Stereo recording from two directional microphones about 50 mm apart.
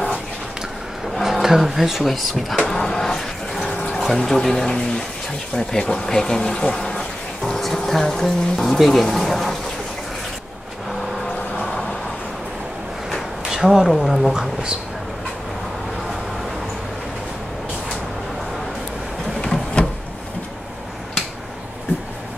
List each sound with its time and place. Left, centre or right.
1.2 s speech: centre
2.7 s a sound: centre
4.2 s speech: centre
13.1 s a sound: centre
14.3 s speech: centre
19.4 s printer: centre